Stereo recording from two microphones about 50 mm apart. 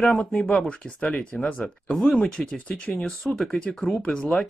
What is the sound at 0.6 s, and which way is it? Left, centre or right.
Speech, left.